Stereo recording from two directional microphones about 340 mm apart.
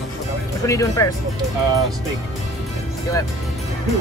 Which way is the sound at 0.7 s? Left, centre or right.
Centre.